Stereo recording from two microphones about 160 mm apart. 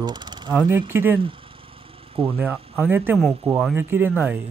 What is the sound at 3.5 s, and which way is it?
Speech, 40° right (ahead or behind).